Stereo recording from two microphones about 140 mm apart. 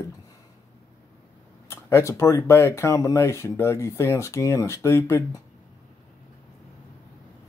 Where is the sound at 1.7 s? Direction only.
20° left (ahead or behind).